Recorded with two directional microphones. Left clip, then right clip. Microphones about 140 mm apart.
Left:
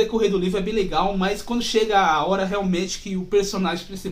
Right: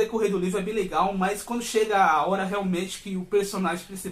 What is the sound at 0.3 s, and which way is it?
A man's voice, 10° right (ahead or behind).